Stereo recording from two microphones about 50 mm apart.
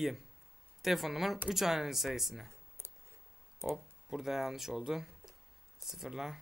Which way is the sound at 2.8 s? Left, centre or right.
Right.